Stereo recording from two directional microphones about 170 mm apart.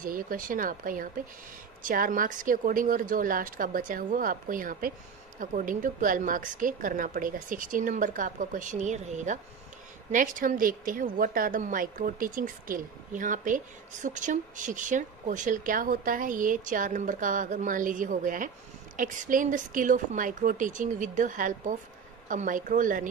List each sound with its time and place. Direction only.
0.0 s speech: 55° right (ahead or behind)